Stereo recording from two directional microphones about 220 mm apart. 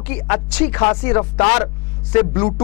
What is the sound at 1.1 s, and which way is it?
Speech, 20° left (ahead or behind).